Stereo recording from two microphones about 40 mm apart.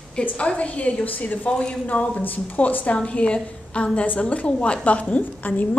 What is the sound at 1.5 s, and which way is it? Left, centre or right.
Speech, left.